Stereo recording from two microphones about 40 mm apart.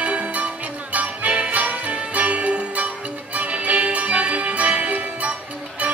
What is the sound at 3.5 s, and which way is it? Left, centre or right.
Music, right.